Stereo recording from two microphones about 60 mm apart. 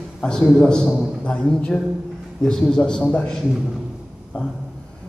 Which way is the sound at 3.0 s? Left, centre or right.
Left.